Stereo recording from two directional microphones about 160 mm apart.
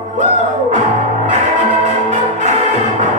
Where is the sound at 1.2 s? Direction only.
45° right (ahead or behind).